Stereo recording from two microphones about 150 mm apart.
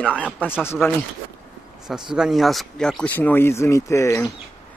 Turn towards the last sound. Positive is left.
turn(degrees=20)  # may be behind; listen again after turning